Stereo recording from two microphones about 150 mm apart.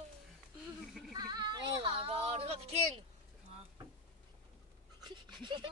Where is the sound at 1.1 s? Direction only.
25° right (ahead or behind); by 2.8 s 45° right (ahead or behind).